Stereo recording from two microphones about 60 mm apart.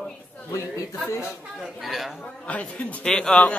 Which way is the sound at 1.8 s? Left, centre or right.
Centre.